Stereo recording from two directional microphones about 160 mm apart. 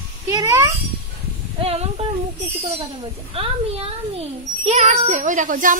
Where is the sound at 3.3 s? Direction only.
35° right (ahead or behind).